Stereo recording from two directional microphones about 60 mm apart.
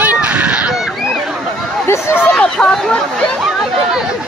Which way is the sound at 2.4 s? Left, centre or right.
Centre.